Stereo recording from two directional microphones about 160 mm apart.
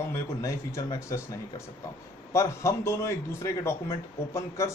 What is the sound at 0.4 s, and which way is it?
Speech, 20° left (ahead or behind).